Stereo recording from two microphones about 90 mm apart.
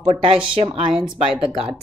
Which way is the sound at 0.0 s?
85° right.